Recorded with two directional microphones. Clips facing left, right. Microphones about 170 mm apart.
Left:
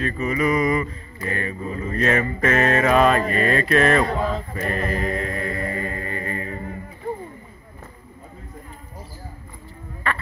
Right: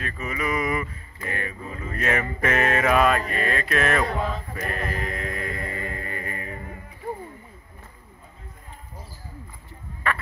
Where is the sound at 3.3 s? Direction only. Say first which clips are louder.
Left 6 dB; 5° right (ahead or behind).